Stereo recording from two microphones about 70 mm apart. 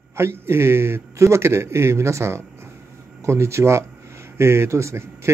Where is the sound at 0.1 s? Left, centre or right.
Right.